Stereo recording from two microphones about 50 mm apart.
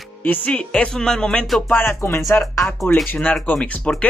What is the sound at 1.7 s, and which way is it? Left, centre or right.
Speech, left.